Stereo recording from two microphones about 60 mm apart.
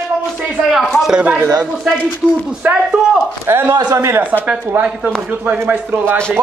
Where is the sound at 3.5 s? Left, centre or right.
Right.